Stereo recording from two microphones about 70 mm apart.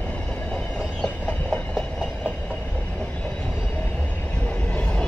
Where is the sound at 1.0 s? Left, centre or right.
Centre.